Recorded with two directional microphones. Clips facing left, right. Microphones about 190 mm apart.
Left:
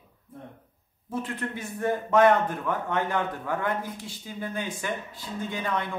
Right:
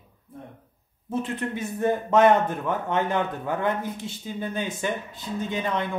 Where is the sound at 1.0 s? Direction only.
20° right (ahead or behind).